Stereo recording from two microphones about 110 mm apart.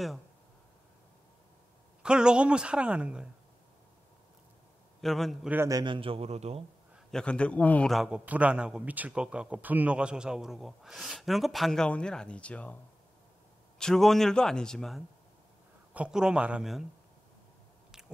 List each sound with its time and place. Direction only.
2.0 s a woman's voice: 10° right (ahead or behind)
5.0 s a man's voice: centre (ahead or behind)
5.7 s a man's voice: 35° right (ahead or behind)
5.9 s a man's voice: 60° right (ahead or behind)
7.1 s a man's voice: 10° left (ahead or behind)
7.9 s a man's voice: 5° right (ahead or behind)
13.7 s a man's voice: 5° left (ahead or behind)
15.9 s a woman's voice: 10° right (ahead or behind)